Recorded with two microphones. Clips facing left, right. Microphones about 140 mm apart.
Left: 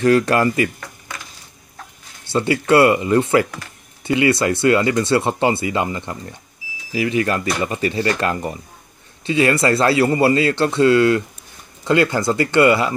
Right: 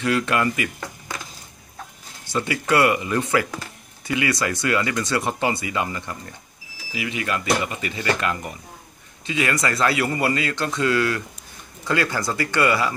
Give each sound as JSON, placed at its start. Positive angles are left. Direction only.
{"t": 0.0, "sound": "speech", "side_deg": 40}
{"t": 2.3, "sound": "speech", "side_deg": 30}
{"t": 6.9, "sound": "speech", "side_deg": 40}